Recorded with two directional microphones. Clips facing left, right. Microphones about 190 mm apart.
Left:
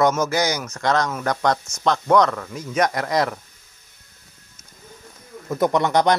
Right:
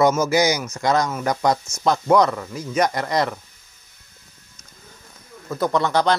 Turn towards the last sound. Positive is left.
turn(degrees=20)  # may be behind; listen again after turning